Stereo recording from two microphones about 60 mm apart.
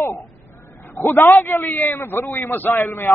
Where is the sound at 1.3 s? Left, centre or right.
Left.